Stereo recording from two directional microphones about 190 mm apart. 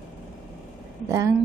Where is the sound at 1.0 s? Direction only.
15° right (ahead or behind).